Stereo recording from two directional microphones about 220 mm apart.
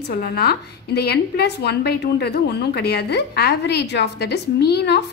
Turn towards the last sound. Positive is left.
turn(degrees=50)  # may be behind; listen again after turning